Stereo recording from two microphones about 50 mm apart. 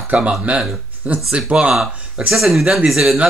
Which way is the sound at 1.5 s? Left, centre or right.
Right.